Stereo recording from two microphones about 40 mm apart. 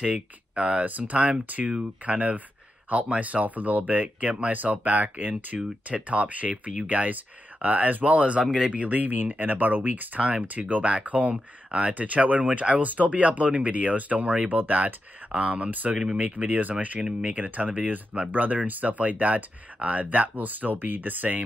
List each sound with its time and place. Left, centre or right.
0.1 s speech: right
0.8 s speech: right
1.1 s speech: right
1.4 s speech: right
1.7 s speech: right
8.4 s speech: centre
8.8 s speech: right
10.6 s speech: right
14.6 s speech: right